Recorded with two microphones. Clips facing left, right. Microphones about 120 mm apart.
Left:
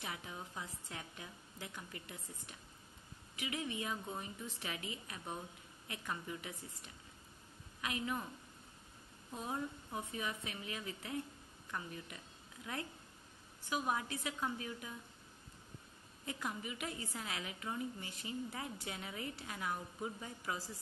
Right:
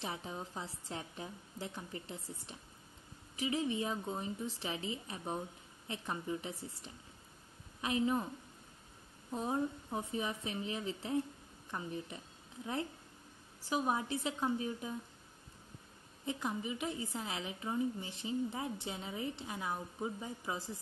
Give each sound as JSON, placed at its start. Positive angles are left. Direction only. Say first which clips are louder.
{"t": 0.0, "sound": "a woman's voice", "louder": "right 5 dB", "side_deg": -30}
{"t": 9.3, "sound": "a woman's voice", "louder": "right 6 dB", "side_deg": -30}
{"t": 13.6, "sound": "a woman's voice", "louder": "right 3 dB", "side_deg": -30}
{"t": 16.3, "sound": "a woman's voice", "louder": "right 5 dB", "side_deg": -25}